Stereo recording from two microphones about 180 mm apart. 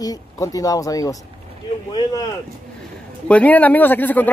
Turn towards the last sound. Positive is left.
turn(degrees=10)  # may be behind; listen again after turning